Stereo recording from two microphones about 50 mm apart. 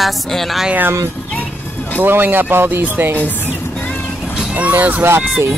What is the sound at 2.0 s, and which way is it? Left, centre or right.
Speech, right.